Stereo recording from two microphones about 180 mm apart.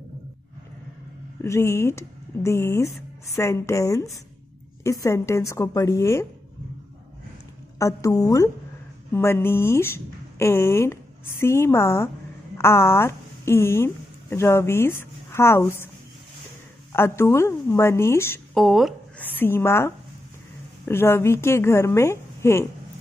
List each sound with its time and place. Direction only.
1.4 s speech: 15° left (ahead or behind)
7.8 s speech: 15° left (ahead or behind)
16.9 s speech: 15° left (ahead or behind)
18.5 s a sound: centre (ahead or behind)
19.2 s speech: 10° left (ahead or behind)